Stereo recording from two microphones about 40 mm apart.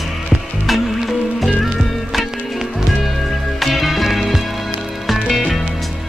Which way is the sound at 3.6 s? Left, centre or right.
Centre.